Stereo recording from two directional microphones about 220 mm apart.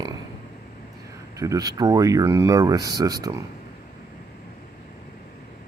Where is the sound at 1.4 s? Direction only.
15° right (ahead or behind).